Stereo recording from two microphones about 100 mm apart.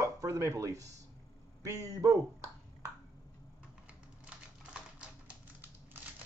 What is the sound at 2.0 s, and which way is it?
Speech, 30° right (ahead or behind).